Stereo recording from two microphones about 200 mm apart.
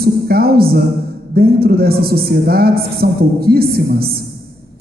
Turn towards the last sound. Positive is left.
turn(degrees=-50)  # may be behind; listen again after turning